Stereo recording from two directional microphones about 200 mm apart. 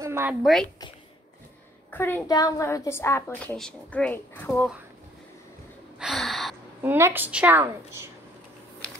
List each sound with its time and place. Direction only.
0.0 s a sound: 10° right (ahead or behind)
0.4 s speech: centre (ahead or behind)
1.9 s a woman's voice: 10° left (ahead or behind)
5.9 s gasp: centre (ahead or behind)
6.8 s a woman's voice: 10° right (ahead or behind)